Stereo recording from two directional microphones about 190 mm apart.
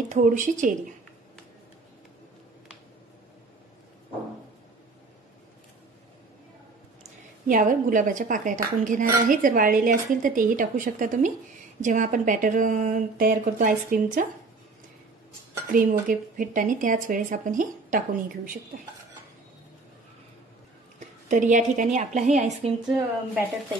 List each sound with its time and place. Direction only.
0.1 s speech: 45° right (ahead or behind)
7.4 s speech: 45° right (ahead or behind)
15.6 s speech: 45° right (ahead or behind)
21.3 s a woman's voice: 40° right (ahead or behind)